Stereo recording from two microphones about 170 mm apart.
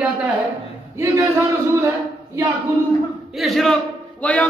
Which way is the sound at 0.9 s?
15° right (ahead or behind).